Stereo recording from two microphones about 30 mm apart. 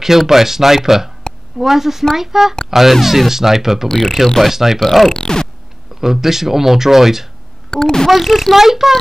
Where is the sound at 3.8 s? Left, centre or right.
Centre.